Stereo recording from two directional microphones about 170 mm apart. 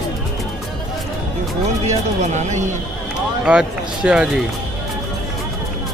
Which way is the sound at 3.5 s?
5° right (ahead or behind).